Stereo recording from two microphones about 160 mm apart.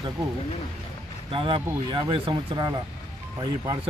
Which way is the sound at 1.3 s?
30° right (ahead or behind).